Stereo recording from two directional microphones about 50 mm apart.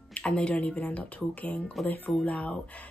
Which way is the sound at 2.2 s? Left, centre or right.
Left.